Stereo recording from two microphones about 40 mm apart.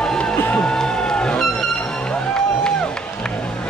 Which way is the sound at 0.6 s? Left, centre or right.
Centre.